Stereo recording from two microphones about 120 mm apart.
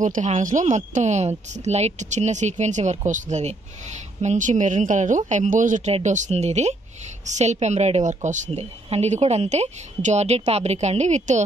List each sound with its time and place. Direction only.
0.0 s speech: 90° right
8.5 s speech: 60° right (ahead or behind); by 11.4 s 75° right (ahead or behind)